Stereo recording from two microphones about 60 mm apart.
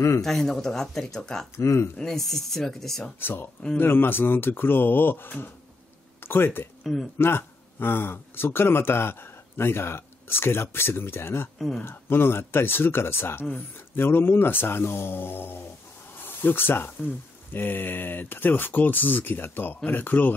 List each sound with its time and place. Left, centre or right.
0.2 s speech: centre
1.6 s speech: left
2.0 s speech: centre
3.2 s speech: left
6.8 s speech: centre
7.2 s speech: left
11.5 s speech: centre
11.8 s speech: left